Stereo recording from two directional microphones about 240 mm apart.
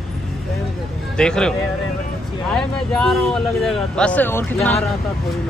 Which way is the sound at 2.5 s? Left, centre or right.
Centre.